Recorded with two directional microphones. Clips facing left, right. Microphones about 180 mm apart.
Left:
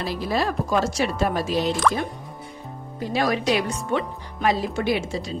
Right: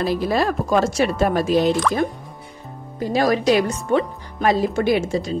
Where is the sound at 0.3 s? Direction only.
55° right (ahead or behind).